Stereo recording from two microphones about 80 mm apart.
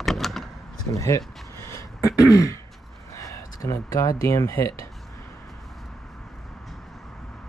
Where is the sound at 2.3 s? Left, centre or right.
Left.